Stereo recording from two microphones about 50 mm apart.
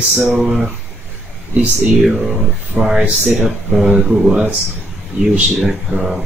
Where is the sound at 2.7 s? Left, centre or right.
Centre.